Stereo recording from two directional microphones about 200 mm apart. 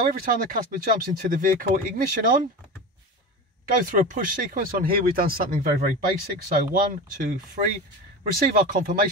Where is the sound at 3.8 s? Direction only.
40° right (ahead or behind).